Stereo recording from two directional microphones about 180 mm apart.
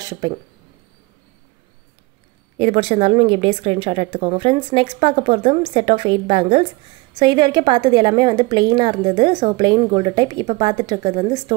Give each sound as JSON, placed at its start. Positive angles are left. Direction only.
{"t": 2.6, "sound": "a woman's voice", "side_deg": -30}